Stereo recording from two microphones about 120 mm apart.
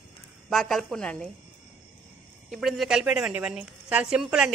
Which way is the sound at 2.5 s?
Centre (ahead or behind).